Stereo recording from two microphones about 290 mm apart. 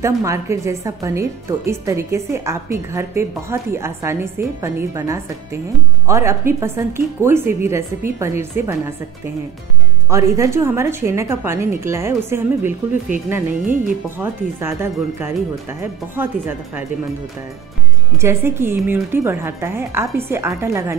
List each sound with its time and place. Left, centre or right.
0.0 s a woman's voice: centre
18.1 s a woman's voice: centre